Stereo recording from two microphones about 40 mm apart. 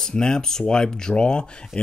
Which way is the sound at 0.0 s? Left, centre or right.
Centre.